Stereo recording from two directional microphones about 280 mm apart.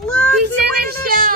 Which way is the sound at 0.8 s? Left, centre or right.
Right.